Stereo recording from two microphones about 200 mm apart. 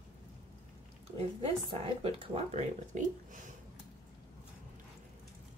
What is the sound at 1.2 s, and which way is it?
Speech, 30° right (ahead or behind).